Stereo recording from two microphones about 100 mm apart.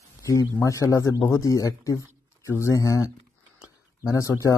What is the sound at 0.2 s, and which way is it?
Speech, 35° left (ahead or behind).